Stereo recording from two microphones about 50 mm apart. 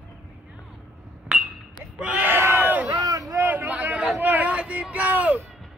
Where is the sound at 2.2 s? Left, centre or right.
Right.